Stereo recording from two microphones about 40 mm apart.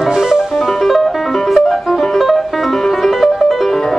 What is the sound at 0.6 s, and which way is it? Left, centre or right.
Music, centre.